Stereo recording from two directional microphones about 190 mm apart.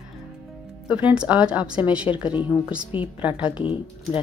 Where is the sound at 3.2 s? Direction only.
5° right (ahead or behind).